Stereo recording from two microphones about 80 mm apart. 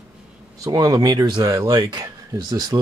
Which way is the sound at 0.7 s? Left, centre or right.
Right.